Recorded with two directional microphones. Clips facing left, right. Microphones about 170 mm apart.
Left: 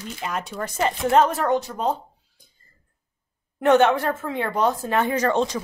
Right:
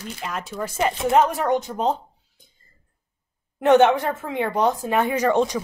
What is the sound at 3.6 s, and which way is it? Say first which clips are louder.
Speech: right 2 dB; 20° right (ahead or behind).